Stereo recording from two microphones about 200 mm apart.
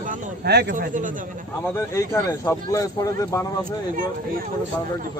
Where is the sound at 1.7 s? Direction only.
15° left (ahead or behind).